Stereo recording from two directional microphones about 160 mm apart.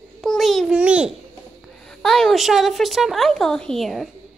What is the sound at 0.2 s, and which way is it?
Babbling, centre (ahead or behind).